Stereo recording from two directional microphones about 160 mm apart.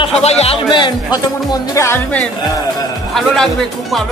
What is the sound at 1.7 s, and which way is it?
Speech, 15° left (ahead or behind).